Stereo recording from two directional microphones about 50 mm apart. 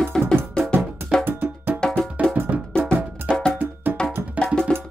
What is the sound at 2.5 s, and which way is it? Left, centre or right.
Music, right.